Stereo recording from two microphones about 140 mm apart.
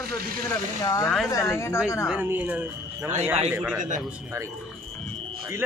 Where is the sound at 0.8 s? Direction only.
25° left (ahead or behind).